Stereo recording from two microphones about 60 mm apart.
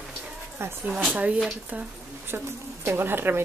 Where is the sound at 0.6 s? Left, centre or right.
Right.